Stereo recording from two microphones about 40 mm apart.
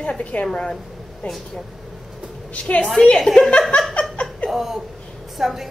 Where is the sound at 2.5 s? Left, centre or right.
Left.